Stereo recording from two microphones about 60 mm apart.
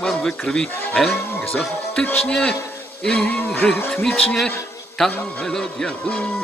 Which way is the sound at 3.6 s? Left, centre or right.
Centre.